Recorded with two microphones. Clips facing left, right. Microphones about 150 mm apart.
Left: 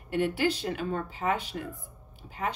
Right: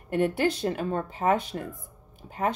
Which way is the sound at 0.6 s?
40° right (ahead or behind).